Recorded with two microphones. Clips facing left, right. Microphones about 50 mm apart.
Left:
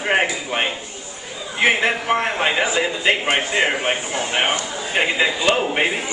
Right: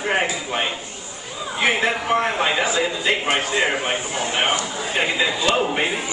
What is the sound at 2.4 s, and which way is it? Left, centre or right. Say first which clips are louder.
Speech: left 1 dB; centre.